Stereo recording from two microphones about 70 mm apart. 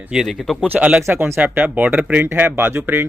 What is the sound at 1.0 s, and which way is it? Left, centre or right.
Speech, right.